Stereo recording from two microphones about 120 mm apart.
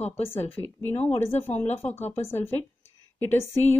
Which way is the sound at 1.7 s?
65° left (ahead or behind).